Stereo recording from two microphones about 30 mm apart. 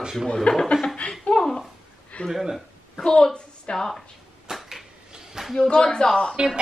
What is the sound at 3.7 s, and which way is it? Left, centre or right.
Speech, centre.